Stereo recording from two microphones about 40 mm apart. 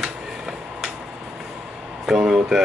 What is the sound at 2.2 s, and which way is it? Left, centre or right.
Speech, right.